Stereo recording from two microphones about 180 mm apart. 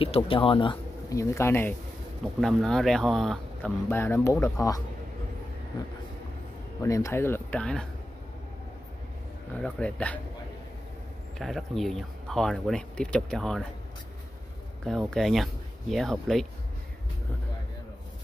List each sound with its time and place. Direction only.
0.0 s speech: 30° left (ahead or behind); by 1.8 s 10° left (ahead or behind)
2.4 s speech: centre (ahead or behind); by 4.8 s 20° left (ahead or behind)
6.8 s speech: 15° left (ahead or behind)
9.8 s speech: 5° left (ahead or behind)
11.3 s speech: centre (ahead or behind)
14.9 s speech: centre (ahead or behind)